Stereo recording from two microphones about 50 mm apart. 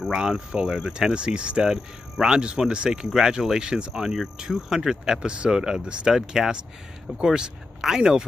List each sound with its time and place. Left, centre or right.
0.0 s speech: centre